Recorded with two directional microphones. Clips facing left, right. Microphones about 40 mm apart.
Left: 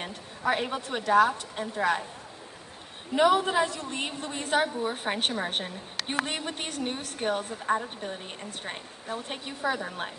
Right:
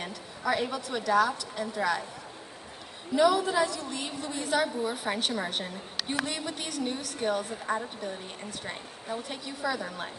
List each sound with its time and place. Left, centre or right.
0.0 s a woman's voice: left
3.2 s a woman's voice: left